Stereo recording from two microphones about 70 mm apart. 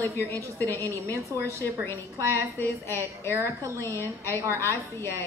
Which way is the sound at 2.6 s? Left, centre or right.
Left.